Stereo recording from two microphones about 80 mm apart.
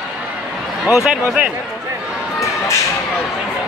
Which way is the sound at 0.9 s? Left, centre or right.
Centre.